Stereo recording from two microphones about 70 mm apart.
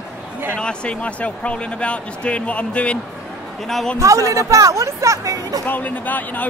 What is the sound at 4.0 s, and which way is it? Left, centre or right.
Speech, right.